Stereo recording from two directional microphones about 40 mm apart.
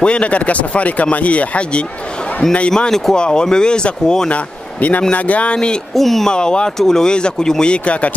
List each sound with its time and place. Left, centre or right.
0.0 s speech: left
2.7 s speech: centre
4.3 s speech: left
5.9 s speech: centre
6.2 s speech: left